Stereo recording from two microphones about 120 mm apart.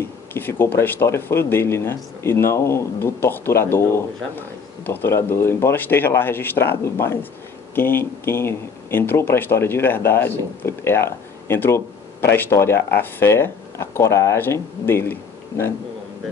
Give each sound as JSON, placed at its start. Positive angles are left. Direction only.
{"t": 0.0, "sound": "speech", "side_deg": 20}